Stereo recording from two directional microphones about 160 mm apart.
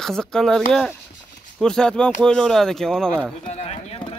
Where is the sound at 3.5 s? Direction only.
40° left (ahead or behind).